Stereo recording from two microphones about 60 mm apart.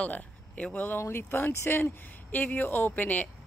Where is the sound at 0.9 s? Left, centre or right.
Left.